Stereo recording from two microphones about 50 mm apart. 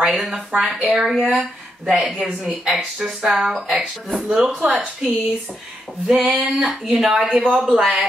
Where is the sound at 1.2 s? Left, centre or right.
Right.